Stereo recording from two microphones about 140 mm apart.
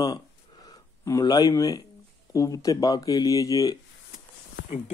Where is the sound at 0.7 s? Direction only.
25° left (ahead or behind).